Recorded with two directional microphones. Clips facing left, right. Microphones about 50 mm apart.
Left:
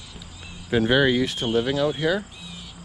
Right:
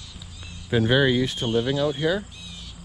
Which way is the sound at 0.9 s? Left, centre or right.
Left.